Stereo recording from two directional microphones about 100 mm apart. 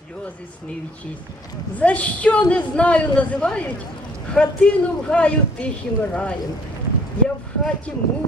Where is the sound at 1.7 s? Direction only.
15° left (ahead or behind).